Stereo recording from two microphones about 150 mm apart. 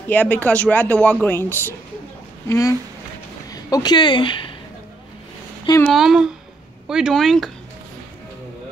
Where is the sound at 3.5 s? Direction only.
25° left (ahead or behind).